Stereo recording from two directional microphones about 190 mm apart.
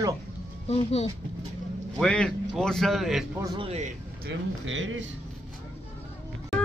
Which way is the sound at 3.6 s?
35° right (ahead or behind).